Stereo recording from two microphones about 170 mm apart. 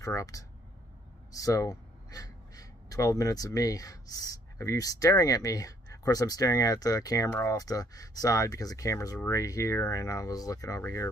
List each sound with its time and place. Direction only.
0.0 s speech: 20° left (ahead or behind)